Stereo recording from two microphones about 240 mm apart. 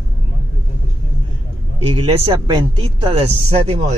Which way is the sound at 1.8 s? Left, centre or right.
Right.